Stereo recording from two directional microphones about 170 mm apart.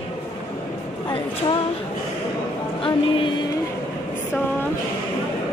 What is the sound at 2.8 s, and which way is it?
Music, 30° left (ahead or behind).